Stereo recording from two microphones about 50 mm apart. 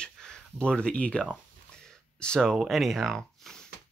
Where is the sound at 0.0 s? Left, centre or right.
Centre.